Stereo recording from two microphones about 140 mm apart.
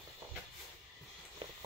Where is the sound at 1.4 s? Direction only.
40° right (ahead or behind).